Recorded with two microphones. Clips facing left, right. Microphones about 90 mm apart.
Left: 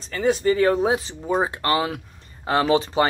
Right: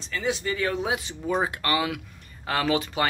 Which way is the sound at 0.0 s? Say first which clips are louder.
Left 8 dB; 45° left (ahead or behind).